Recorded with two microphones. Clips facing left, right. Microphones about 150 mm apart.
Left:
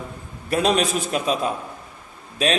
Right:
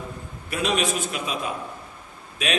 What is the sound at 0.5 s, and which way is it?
Speech, 35° left (ahead or behind).